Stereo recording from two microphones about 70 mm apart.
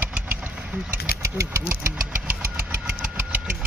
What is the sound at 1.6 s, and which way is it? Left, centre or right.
Engine, right.